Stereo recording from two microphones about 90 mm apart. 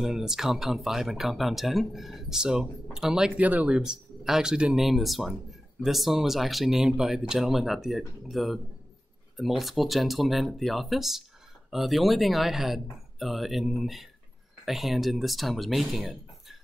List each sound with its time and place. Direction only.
0.0 s speech: 5° right (ahead or behind)